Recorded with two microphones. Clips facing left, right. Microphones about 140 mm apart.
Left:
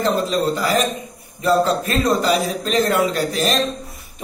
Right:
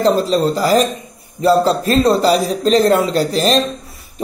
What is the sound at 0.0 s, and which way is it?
A man's voice, 35° right (ahead or behind).